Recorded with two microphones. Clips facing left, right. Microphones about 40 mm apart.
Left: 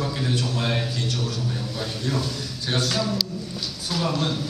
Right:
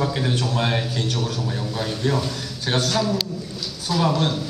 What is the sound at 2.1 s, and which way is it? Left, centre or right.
Speech, right.